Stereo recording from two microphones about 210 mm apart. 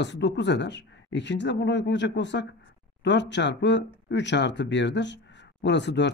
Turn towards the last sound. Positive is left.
turn(degrees=55)  # may be behind; listen again after turning